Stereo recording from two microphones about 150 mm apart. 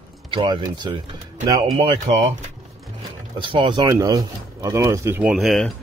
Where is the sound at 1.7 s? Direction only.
40° right (ahead or behind).